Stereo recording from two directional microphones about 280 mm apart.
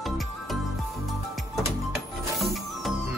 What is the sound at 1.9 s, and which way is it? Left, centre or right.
Music, centre.